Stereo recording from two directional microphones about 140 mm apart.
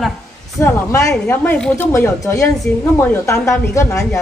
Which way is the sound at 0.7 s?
20° left (ahead or behind).